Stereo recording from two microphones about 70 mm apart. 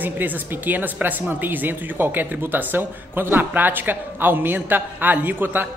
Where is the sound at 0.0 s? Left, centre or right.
Right.